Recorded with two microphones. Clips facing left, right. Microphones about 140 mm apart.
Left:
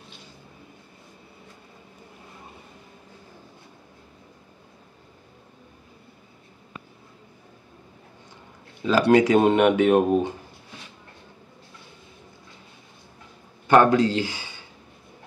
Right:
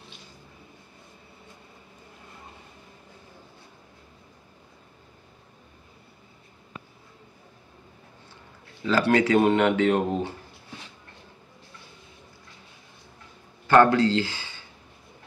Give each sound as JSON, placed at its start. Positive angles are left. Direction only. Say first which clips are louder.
{"t": 8.8, "sound": "speech", "louder": "left 4 dB", "side_deg": 15}
{"t": 13.7, "sound": "speech", "louder": "left 1 dB", "side_deg": 15}